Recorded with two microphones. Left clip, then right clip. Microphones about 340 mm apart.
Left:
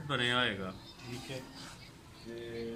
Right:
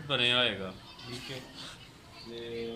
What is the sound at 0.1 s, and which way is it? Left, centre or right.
Speech, centre.